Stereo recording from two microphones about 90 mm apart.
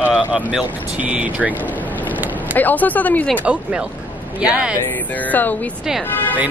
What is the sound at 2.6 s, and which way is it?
Speech, 20° left (ahead or behind).